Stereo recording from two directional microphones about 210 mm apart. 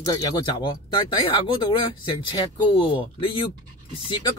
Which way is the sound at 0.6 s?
20° left (ahead or behind).